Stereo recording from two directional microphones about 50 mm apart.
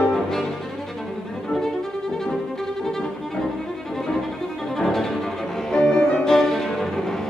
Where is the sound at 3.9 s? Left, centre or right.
Centre.